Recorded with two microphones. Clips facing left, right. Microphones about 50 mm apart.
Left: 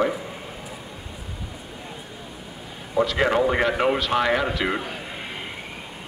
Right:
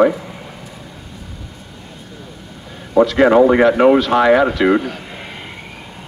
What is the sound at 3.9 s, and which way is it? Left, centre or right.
Speech, centre.